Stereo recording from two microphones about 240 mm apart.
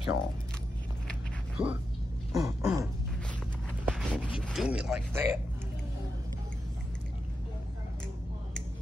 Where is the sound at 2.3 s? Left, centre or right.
Centre.